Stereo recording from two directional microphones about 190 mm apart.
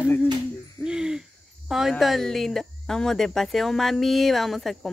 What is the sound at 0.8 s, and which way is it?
Hoot, 5° right (ahead or behind).